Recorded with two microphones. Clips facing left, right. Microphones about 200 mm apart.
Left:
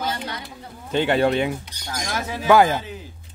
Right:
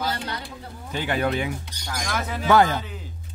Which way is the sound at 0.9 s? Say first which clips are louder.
Left 6 dB; 25° left (ahead or behind).